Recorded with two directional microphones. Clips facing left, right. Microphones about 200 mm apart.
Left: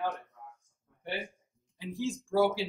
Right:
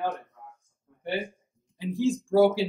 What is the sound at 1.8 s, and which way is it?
Speech, 30° right (ahead or behind).